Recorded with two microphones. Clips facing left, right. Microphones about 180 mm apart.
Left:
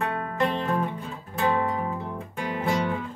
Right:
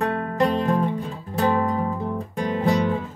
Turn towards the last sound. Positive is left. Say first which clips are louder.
# right 5 dB
turn(degrees=-35)  # may be behind; listen again after turning